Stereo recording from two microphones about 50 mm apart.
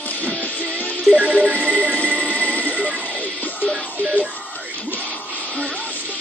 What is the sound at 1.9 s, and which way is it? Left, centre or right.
Music, left.